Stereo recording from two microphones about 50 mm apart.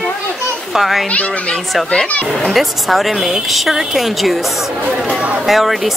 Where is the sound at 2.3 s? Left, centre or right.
Centre.